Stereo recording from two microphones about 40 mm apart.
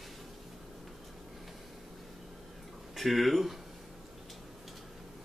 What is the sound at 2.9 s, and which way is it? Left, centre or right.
Speech, centre.